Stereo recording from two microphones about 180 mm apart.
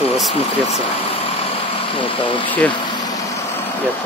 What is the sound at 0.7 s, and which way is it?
Vehicle, 30° left (ahead or behind).